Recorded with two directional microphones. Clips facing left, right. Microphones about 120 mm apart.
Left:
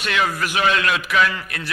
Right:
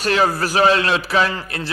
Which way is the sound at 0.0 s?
35° right (ahead or behind).